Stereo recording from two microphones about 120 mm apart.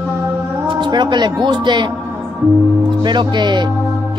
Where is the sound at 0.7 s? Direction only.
40° right (ahead or behind).